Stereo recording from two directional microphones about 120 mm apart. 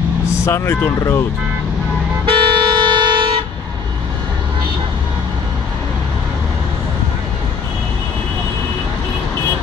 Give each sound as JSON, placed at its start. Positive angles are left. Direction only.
{"t": 0.3, "sound": "speech", "side_deg": 20}
{"t": 2.2, "sound": "vehicle", "side_deg": -40}